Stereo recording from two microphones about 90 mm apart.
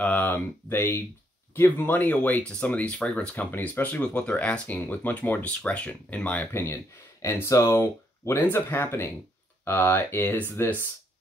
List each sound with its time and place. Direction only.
0.0 s speech: 20° left (ahead or behind)
6.5 s speech: 25° left (ahead or behind)